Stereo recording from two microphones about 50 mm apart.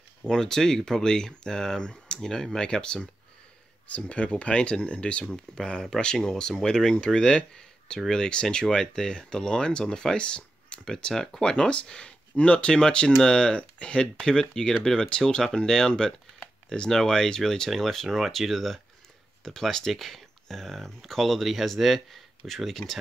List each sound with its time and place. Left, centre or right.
0.2 s speech: centre